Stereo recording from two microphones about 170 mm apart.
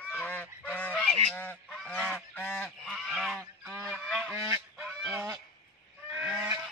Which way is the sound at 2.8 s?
Centre (ahead or behind).